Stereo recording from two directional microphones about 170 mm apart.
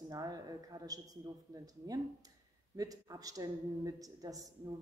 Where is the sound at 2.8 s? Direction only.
20° right (ahead or behind).